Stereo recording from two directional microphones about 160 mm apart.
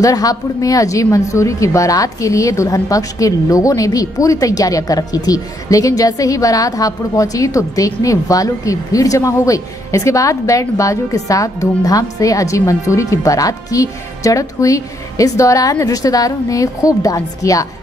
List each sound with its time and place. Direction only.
0.0 s a woman's voice: 20° left (ahead or behind)